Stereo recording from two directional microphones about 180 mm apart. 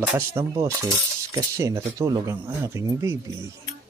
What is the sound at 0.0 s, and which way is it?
Speech, 10° right (ahead or behind).